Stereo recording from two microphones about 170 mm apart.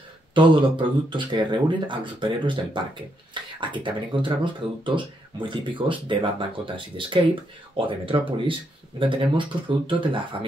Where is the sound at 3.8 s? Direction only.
30° right (ahead or behind).